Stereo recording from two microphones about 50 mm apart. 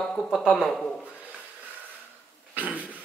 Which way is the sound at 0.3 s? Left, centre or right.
Centre.